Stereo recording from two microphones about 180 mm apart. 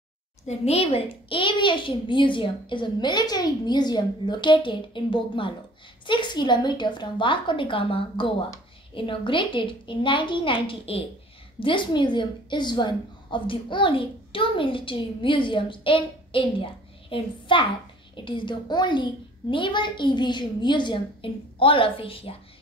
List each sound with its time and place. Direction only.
0.5 s a woman's voice: 35° left (ahead or behind)